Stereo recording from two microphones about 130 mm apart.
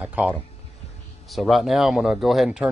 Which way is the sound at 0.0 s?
10° right (ahead or behind).